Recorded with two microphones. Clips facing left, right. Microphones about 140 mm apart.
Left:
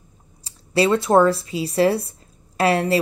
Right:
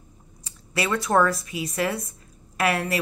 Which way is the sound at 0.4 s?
30° left (ahead or behind).